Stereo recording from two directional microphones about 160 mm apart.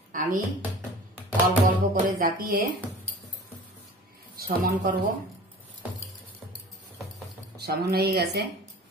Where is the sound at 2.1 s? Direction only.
65° right (ahead or behind).